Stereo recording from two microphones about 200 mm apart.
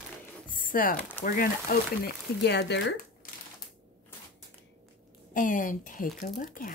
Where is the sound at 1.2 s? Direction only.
45° left (ahead or behind).